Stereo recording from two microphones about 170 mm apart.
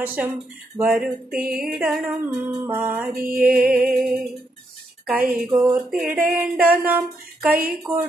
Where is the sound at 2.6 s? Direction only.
10° right (ahead or behind).